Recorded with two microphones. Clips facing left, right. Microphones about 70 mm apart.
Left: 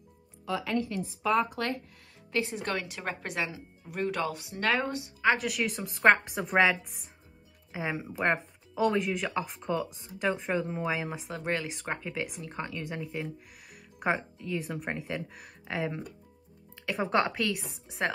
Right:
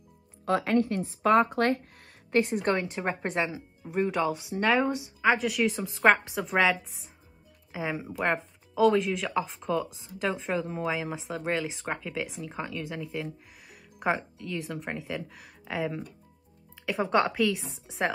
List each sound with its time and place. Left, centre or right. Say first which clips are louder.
0.5 s a woman's voice: right 6 dB; right
1.3 s a woman's voice: right 5 dB; right
2.6 s a woman's voice: right 6 dB; right
3.3 s speech: right 3 dB; right
3.8 s speech: right 4 dB; centre
5.4 s speech: right 4 dB; centre